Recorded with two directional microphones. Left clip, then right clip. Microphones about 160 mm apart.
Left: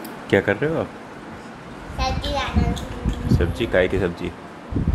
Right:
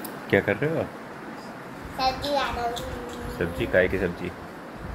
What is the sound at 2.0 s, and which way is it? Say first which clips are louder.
Speech: even; 10° left (ahead or behind).